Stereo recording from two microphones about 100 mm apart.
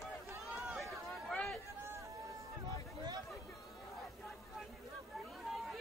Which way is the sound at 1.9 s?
30° right (ahead or behind).